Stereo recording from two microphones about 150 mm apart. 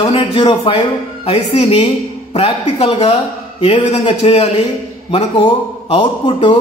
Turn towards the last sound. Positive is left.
turn(degrees=35)  # may be behind; listen again after turning